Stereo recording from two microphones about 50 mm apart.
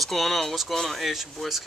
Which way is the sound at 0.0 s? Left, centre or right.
Centre.